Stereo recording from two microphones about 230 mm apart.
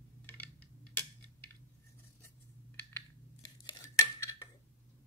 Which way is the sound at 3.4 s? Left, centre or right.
Centre.